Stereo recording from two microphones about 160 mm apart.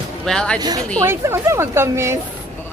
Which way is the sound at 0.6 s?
25° right (ahead or behind).